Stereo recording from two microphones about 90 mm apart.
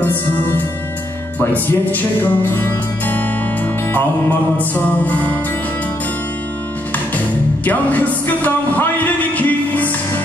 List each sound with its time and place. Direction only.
0.0 s music: 20° left (ahead or behind)
7.6 s music: 20° left (ahead or behind)